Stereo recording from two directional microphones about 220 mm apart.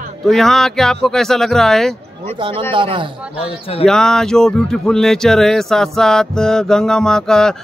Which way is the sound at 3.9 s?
5° left (ahead or behind).